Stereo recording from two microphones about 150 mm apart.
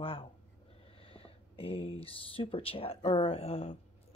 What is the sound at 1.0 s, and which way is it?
Speech, 40° left (ahead or behind).